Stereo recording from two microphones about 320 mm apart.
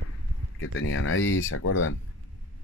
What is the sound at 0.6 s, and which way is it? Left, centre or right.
Speech, left.